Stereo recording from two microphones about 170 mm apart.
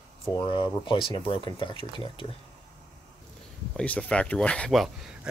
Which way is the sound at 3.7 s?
10° left (ahead or behind).